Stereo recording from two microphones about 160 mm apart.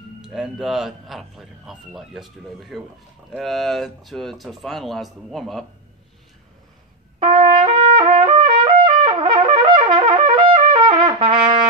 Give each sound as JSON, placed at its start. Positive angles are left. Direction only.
{"t": 0.2, "sound": "a man's voice", "side_deg": -5}
{"t": 7.2, "sound": "trumpet", "side_deg": -30}
{"t": 9.1, "sound": "wind instrument", "side_deg": -30}